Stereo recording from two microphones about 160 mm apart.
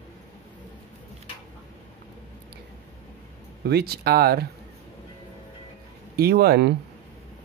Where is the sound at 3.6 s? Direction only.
80° right.